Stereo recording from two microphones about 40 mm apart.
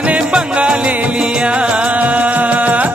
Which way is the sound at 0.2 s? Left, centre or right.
Right.